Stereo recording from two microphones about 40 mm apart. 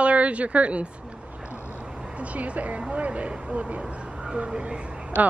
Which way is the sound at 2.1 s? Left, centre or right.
Right.